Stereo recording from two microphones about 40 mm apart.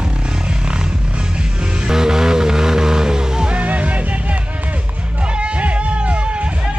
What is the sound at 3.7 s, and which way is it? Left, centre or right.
Music, right.